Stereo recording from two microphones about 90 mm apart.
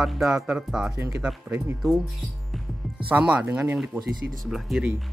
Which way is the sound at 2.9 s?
15° right (ahead or behind).